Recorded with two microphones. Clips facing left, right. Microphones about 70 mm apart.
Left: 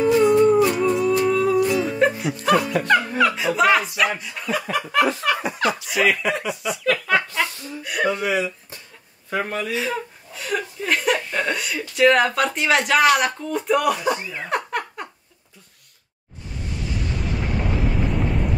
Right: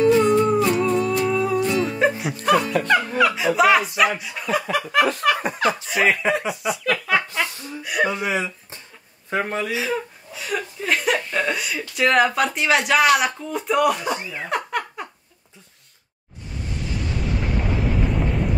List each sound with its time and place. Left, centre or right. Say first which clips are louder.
0.0 s music: left 1 dB; centre
2.9 s snicker: left 1 dB; centre
5.2 s speech: right 2 dB; centre
5.7 s speech: right 1 dB; right
6.3 s chuckle: right 2 dB; centre
8.0 s speech: even; centre
8.3 s speech: left 2 dB; right
9.3 s a man's voice: right 1 dB; centre
9.7 s speech: right 1 dB; centre
18.0 s eruption: even; centre